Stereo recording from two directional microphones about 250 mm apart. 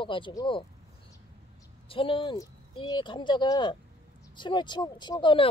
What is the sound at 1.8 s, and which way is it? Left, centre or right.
Speech, left.